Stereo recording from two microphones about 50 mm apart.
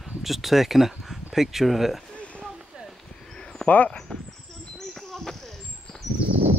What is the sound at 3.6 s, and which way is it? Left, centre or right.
Speech, left.